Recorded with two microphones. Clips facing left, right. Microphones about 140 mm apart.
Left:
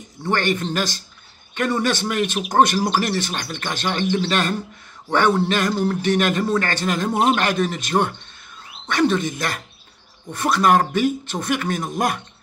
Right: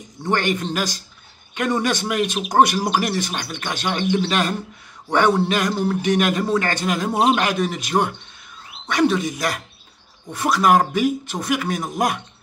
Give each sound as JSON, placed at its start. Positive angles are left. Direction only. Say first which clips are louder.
{"t": 0.2, "sound": "speech", "louder": "even", "side_deg": -15}